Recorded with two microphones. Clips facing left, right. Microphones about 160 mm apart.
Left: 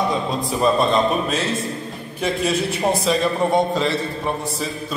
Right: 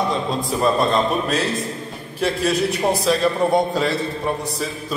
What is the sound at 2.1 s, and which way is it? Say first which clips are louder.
A man's voice: right 1 dB; centre (ahead or behind).